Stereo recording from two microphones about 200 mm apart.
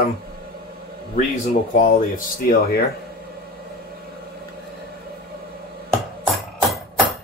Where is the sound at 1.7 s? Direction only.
45° left (ahead or behind).